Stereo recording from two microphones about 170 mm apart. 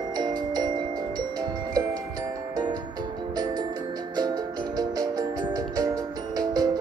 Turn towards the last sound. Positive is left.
turn(degrees=-20)  # may be behind; listen again after turning